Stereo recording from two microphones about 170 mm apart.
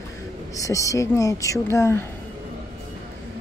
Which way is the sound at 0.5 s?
20° left (ahead or behind).